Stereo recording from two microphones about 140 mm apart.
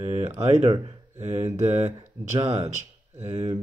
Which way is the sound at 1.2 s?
55° right (ahead or behind).